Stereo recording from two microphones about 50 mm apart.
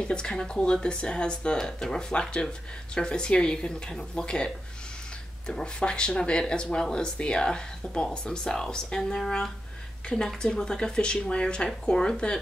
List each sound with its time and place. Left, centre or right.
0.0 s speech: centre
5.5 s speech: centre